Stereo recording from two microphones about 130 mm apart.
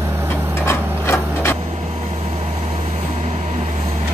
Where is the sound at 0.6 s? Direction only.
20° left (ahead or behind).